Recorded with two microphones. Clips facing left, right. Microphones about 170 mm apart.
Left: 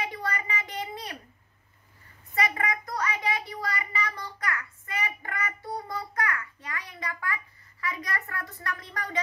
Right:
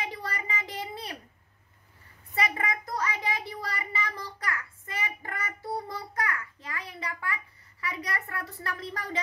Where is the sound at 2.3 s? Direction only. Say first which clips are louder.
Left 1 dB; 25° right (ahead or behind).